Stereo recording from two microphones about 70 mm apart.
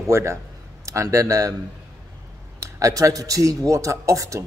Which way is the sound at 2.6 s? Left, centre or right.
Right.